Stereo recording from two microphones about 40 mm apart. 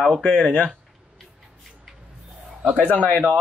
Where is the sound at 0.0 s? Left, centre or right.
Left.